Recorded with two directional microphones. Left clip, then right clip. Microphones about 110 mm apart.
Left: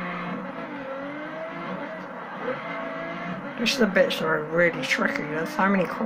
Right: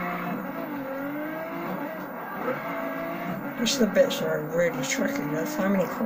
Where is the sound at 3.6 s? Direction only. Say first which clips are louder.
Left 1 dB; 30° right (ahead or behind).